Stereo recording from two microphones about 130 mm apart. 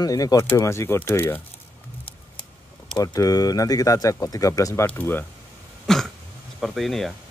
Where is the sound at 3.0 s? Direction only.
30° left (ahead or behind).